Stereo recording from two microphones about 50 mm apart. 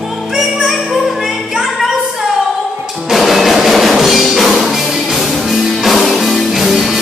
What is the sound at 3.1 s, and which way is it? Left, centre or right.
Music, centre.